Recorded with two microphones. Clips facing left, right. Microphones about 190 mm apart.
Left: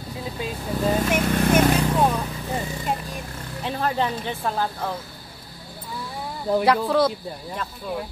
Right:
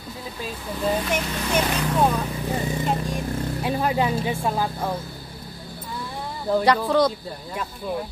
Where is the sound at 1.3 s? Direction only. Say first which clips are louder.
Left 8 dB; 50° left (ahead or behind).